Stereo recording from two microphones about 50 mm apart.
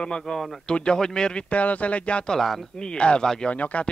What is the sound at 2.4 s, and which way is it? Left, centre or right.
Speech, centre.